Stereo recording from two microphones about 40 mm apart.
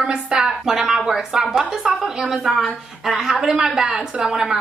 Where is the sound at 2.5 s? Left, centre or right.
Centre.